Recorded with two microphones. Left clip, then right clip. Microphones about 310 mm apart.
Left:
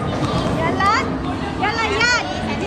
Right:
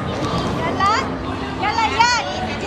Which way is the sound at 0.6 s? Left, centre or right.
Centre.